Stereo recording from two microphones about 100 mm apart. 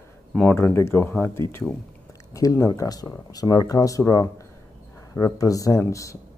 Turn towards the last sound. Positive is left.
turn(degrees=30)  # may be behind; listen again after turning